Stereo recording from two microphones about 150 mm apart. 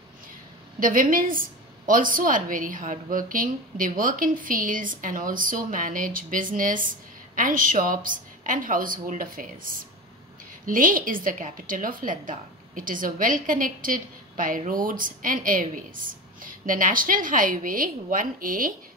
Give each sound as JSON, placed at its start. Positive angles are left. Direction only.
{"t": 0.7, "sound": "a woman's voice", "side_deg": -65}